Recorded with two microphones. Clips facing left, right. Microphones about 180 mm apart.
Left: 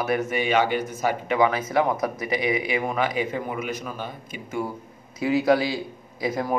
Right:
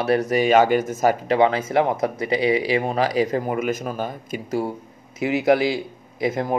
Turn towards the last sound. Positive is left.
turn(degrees=-25)  # may be behind; listen again after turning